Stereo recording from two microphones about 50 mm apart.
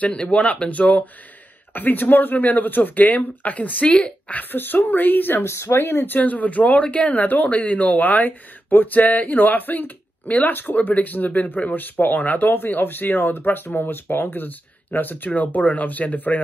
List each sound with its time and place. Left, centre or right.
0.0 s speech: left
5.4 s speech: left